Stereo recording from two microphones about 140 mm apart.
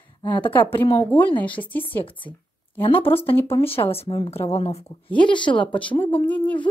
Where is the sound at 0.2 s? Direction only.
35° left (ahead or behind).